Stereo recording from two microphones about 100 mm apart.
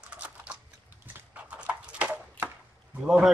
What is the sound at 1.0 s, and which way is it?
Horse, 15° right (ahead or behind).